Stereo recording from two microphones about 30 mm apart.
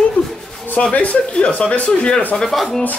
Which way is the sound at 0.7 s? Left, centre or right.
Left.